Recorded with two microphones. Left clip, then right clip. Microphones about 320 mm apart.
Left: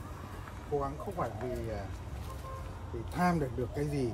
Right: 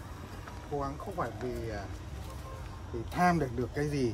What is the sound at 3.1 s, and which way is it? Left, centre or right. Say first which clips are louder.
Speech: right 4 dB; centre.